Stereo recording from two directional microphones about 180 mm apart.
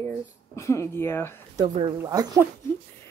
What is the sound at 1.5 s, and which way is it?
Speech, 25° right (ahead or behind).